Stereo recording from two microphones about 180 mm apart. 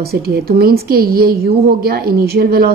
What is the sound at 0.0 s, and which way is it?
A woman's voice, 55° right (ahead or behind).